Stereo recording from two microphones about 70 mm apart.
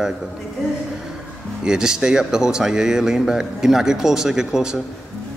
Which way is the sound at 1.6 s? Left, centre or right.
Centre.